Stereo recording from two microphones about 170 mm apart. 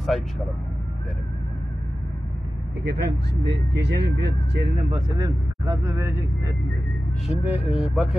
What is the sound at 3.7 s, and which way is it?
Speech, 80° right.